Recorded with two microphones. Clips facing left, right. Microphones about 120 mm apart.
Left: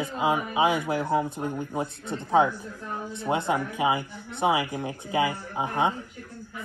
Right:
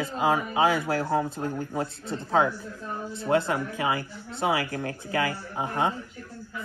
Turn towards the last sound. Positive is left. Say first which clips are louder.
# left 1 dB
turn(degrees=20)  # may be behind; listen again after turning